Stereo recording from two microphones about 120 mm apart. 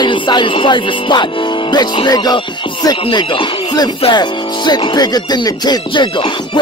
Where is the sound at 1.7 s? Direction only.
35° left (ahead or behind).